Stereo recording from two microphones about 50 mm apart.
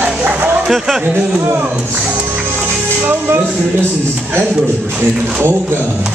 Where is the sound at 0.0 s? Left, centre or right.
Right.